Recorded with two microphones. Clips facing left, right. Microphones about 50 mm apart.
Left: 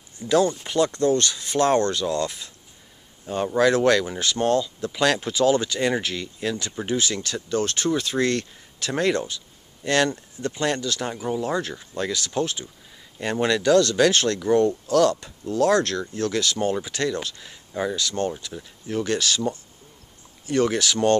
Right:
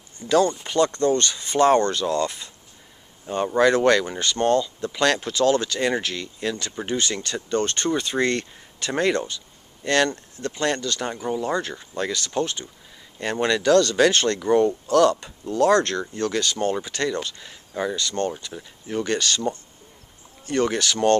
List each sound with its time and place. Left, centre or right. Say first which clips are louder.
0.3 s speech: right 1 dB; centre
1.1 s speech: right 1 dB; centre
16.3 s speech: even; centre